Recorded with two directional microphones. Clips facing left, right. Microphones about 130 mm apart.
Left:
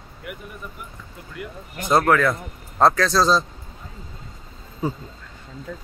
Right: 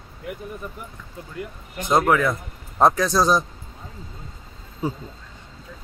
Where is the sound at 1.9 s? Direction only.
15° right (ahead or behind).